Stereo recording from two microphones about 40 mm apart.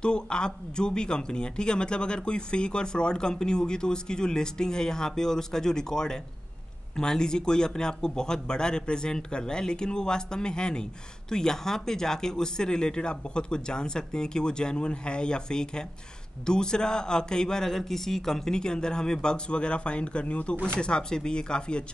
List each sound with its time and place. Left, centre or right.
0.0 s speech: left